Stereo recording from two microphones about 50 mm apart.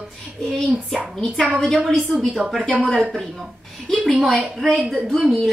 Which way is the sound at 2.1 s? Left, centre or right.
Centre.